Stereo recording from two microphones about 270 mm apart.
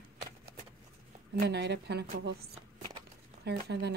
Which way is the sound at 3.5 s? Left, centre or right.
Right.